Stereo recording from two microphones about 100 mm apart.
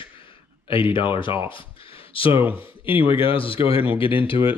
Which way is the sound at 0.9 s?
55° left (ahead or behind).